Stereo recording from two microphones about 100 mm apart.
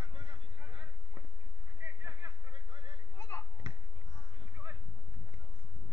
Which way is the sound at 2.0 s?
30° right (ahead or behind).